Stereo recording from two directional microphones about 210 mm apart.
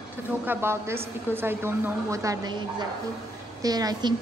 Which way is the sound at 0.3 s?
10° right (ahead or behind).